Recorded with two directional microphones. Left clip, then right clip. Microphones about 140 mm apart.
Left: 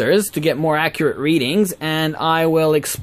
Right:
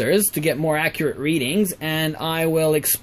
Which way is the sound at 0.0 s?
10° left (ahead or behind).